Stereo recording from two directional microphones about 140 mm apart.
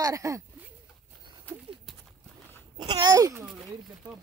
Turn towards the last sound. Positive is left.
turn(degrees=-20)  # may be behind; listen again after turning